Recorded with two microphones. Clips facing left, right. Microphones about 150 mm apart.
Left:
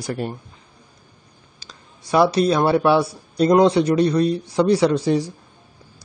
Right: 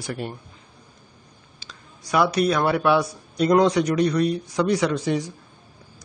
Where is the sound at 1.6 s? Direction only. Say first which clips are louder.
Even; 35° left (ahead or behind).